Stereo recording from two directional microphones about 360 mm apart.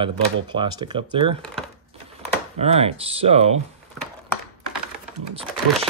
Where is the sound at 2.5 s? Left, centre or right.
Centre.